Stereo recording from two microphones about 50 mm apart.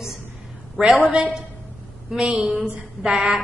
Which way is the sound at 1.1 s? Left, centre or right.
Right.